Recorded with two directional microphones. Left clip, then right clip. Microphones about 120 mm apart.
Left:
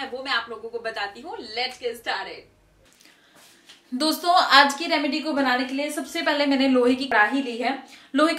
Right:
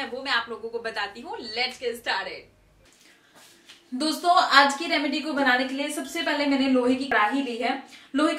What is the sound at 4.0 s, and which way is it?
A woman's voice, 25° left (ahead or behind).